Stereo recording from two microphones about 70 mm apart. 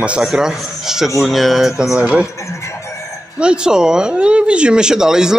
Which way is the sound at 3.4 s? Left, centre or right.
Centre.